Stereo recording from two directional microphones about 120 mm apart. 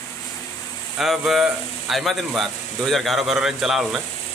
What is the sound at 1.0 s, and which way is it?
A man's voice, centre (ahead or behind).